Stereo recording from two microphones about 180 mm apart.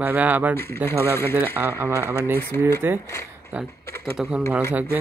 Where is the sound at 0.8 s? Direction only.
10° left (ahead or behind).